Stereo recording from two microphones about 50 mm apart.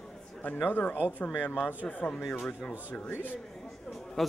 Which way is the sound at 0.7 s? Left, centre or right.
Left.